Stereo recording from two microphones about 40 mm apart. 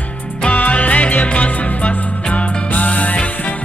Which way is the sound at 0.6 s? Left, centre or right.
Left.